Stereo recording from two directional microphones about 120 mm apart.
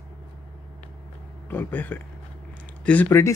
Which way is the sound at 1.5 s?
15° left (ahead or behind).